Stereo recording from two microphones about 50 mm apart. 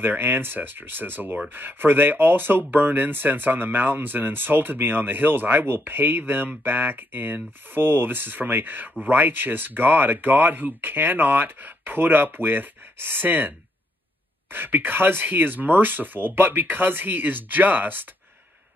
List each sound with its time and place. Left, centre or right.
0.0 s speech: right
14.5 s speech: right